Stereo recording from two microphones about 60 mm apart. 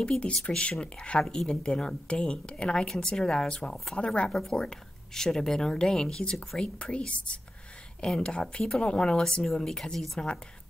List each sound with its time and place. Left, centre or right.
0.0 s speech: centre
1.2 s speech: centre